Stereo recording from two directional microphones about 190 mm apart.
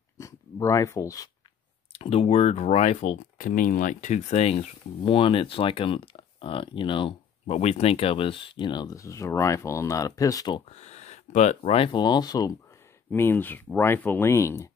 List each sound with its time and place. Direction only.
0.2 s speech: 15° left (ahead or behind)
1.9 s speech: 30° left (ahead or behind)
10.7 s speech: 35° left (ahead or behind); by 14.7 s 15° left (ahead or behind)